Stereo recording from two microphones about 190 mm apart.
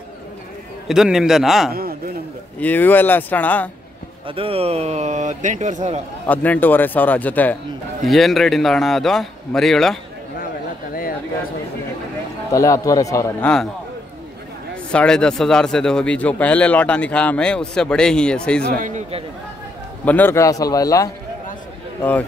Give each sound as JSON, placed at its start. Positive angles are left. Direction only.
{"t": 0.8, "sound": "speech", "side_deg": -5}
{"t": 1.7, "sound": "speech", "side_deg": -50}
{"t": 2.6, "sound": "a man's voice", "side_deg": 10}
{"t": 4.3, "sound": "a man's voice", "side_deg": -30}
{"t": 6.2, "sound": "a man's voice", "side_deg": 10}
{"t": 12.5, "sound": "a man's voice", "side_deg": 15}
{"t": 14.9, "sound": "speech", "side_deg": 5}
{"t": 18.8, "sound": "a man's voice", "side_deg": -40}
{"t": 20.1, "sound": "a man's voice", "side_deg": 10}